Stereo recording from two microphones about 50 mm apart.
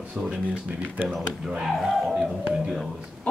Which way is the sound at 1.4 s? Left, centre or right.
Centre.